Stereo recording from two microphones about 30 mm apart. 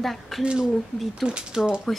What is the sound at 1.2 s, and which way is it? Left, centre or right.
Speech, right.